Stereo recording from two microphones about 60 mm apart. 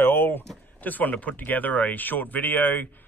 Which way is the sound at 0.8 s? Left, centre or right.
Left.